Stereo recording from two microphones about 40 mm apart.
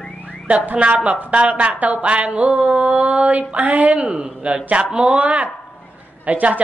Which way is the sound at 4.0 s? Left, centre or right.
Right.